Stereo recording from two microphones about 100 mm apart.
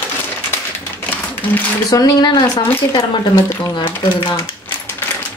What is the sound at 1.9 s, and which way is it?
Speech, 40° left (ahead or behind).